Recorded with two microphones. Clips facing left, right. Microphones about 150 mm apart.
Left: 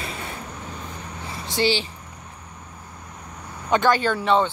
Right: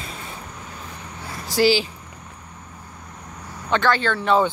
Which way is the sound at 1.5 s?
5° right (ahead or behind).